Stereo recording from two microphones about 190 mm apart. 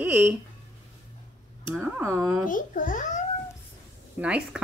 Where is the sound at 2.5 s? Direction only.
45° left (ahead or behind).